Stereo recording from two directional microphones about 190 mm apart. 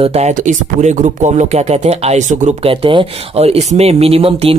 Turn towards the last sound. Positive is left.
turn(degrees=-30)  # may be behind; listen again after turning